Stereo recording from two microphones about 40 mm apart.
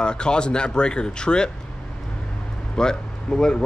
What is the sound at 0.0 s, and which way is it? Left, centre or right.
Speech, left.